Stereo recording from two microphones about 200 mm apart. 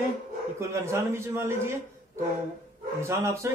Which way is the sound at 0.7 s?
15° right (ahead or behind).